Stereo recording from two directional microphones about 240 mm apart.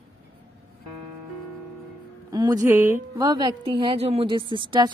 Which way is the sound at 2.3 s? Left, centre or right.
Centre.